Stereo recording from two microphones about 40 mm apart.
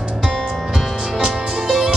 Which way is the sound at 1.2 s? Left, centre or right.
Centre.